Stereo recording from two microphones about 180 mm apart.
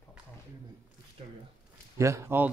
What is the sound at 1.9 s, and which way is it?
Speech, 15° right (ahead or behind).